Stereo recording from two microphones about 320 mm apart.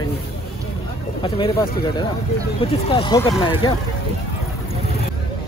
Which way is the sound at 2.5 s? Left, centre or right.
Centre.